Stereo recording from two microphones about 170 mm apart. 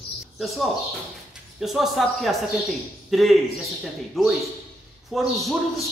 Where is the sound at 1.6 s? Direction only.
Centre (ahead or behind).